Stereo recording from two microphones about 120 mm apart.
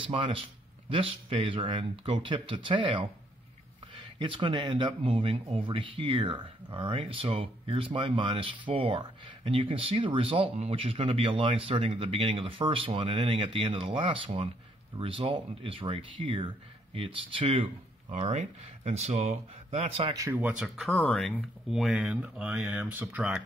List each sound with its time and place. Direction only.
0.1 s speech: 50° right (ahead or behind)
4.2 s speech: 45° right (ahead or behind)
18.1 s speech: 60° right (ahead or behind)
20.2 s speech: 15° right (ahead or behind)
20.6 s speech: centre (ahead or behind)
21.6 s speech: 5° right (ahead or behind)